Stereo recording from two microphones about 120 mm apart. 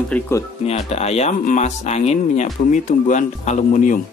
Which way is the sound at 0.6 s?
60° left (ahead or behind).